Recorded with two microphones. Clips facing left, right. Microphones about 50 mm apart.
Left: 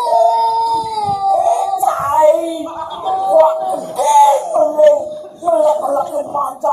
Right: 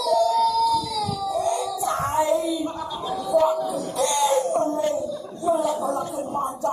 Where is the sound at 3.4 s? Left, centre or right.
Left.